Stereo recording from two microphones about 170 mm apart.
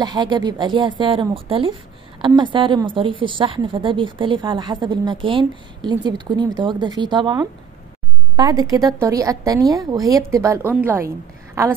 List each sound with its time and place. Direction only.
0.0 s a woman's voice: 25° right (ahead or behind)